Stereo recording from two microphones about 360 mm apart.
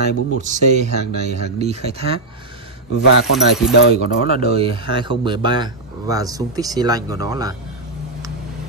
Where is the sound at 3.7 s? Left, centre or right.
Left.